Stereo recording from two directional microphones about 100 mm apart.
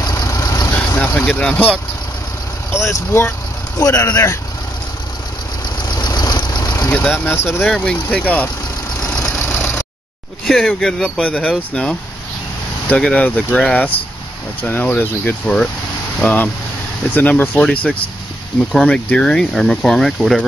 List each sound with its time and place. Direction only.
0.0 s vehicle: 40° left (ahead or behind)
0.7 s speech: 20° left (ahead or behind)
2.7 s speech: 25° left (ahead or behind)
3.8 s speech: 35° left (ahead or behind)
5.8 s vehicle: 45° left (ahead or behind)
6.9 s speech: 20° left (ahead or behind)
7.6 s speech: 10° left (ahead or behind)
9.0 s vehicle: 10° left (ahead or behind)
9.5 s vehicle: 20° left (ahead or behind)
10.4 s speech: 5° left (ahead or behind)